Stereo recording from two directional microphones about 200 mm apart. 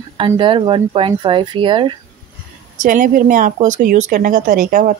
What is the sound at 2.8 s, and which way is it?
Speech, 40° right (ahead or behind).